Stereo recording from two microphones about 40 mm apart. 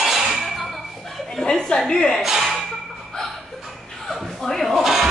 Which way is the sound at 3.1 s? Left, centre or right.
Left.